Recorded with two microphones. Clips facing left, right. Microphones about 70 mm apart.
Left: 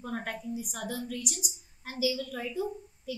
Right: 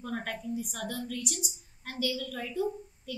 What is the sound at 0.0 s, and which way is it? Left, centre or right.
A woman's voice, centre.